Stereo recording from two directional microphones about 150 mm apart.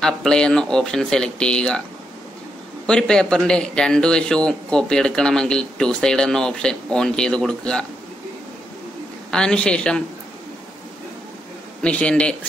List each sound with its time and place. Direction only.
0.0 s speech: 5° left (ahead or behind)
2.9 s speech: 5° left (ahead or behind)
9.3 s speech: 5° left (ahead or behind)
11.8 s a man's voice: 5° left (ahead or behind)